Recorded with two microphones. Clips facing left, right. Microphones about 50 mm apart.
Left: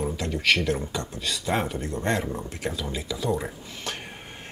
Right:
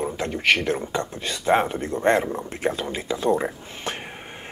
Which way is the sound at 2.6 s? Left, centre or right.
Right.